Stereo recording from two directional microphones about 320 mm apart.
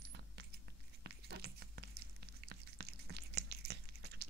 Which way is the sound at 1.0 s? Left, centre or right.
Right.